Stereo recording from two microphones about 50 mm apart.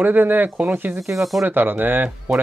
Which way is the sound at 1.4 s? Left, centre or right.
Right.